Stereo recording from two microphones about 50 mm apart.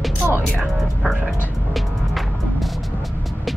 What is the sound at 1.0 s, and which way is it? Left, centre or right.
Music, centre.